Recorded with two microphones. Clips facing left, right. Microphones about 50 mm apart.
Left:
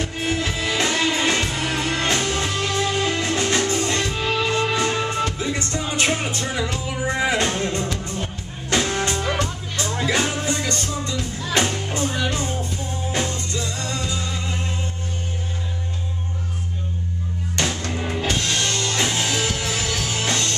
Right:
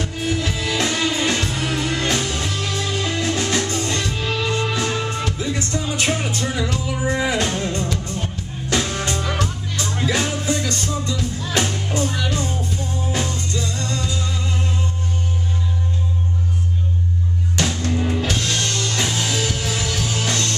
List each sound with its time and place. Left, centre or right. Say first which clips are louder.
0.1 s music: right 1 dB; left
0.4 s music: even; centre
7.2 s music: left 1 dB; centre
7.4 s music: even; centre
17.6 s music: right 2 dB; centre